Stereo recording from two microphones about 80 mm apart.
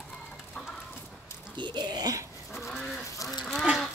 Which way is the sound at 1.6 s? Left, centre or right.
Right.